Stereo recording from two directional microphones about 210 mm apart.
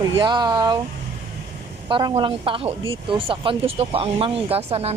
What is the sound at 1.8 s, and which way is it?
Speech, 25° right (ahead or behind).